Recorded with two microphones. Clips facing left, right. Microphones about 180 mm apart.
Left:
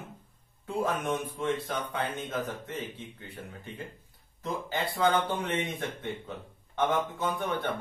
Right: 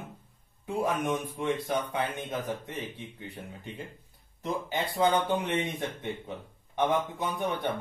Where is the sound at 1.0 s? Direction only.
15° right (ahead or behind).